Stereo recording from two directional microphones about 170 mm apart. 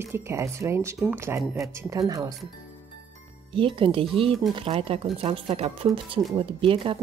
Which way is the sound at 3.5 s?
30° right (ahead or behind).